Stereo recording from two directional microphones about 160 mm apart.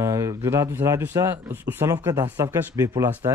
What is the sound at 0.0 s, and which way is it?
Speech, 20° right (ahead or behind).